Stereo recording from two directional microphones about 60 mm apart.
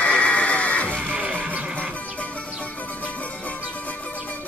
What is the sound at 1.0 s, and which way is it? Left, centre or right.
Music, right.